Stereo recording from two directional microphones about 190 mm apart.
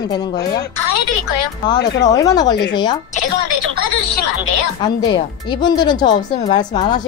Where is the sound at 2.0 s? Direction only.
20° left (ahead or behind).